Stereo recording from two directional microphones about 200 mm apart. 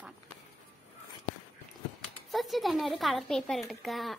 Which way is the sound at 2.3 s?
Centre (ahead or behind).